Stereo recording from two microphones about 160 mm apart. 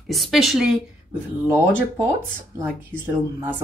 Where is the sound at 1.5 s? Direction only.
15° right (ahead or behind).